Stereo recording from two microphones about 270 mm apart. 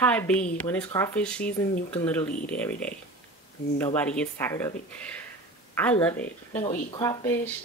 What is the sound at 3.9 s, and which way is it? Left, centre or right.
A woman's voice, centre.